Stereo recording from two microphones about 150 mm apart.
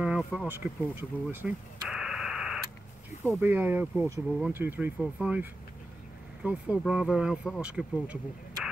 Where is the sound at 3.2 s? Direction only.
15° right (ahead or behind).